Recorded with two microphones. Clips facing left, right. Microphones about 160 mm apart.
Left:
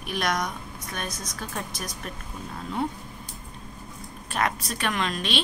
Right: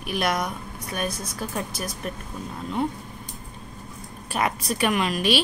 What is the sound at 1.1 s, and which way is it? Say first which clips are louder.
Speech: right 3 dB; 30° right (ahead or behind).